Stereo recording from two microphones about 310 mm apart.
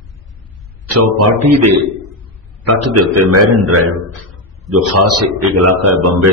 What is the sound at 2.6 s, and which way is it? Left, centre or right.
A man's voice, right.